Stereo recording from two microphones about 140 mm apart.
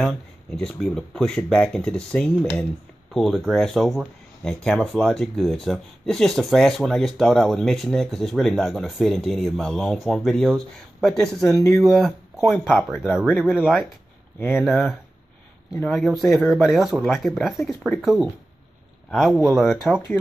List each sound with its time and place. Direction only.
0.6 s speech: 5° left (ahead or behind)
11.5 s speech: 25° left (ahead or behind)
11.8 s speech: centre (ahead or behind)
12.4 s speech: 15° left (ahead or behind)
13.0 s speech: 5° right (ahead or behind)